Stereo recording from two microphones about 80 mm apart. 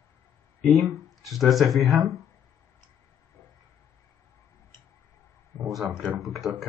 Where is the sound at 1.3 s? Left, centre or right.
Centre.